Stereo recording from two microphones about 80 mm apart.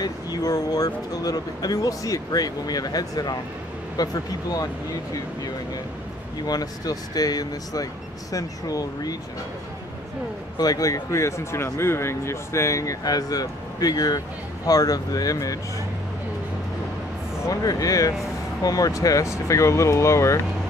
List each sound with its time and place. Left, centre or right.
0.0 s speech: left
6.4 s speech: left
10.6 s speech: left
17.5 s speech: left